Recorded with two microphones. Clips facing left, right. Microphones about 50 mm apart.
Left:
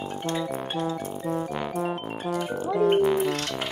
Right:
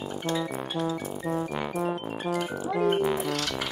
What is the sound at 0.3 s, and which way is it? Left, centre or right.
Speech, left.